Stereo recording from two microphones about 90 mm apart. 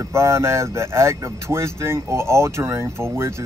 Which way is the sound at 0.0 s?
30° right (ahead or behind).